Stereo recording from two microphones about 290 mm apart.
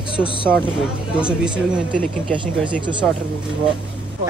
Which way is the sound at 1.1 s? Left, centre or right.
Centre.